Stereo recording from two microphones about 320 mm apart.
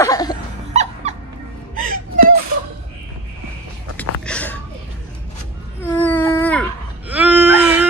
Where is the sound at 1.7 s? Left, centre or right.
Right.